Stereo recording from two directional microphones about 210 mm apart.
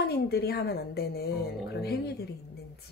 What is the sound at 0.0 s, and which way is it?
A woman's voice, 50° left (ahead or behind).